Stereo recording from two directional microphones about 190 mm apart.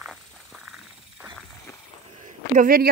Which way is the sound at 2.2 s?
45° right (ahead or behind).